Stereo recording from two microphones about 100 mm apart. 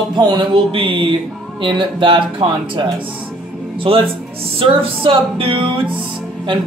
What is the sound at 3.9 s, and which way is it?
Music, 60° right (ahead or behind).